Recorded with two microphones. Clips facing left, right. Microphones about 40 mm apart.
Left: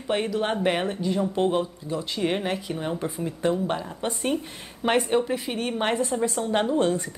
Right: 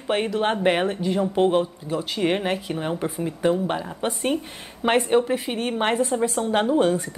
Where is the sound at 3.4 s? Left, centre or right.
Centre.